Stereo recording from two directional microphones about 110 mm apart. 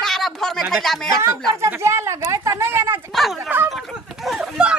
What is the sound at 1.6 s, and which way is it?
A woman's voice, 25° right (ahead or behind).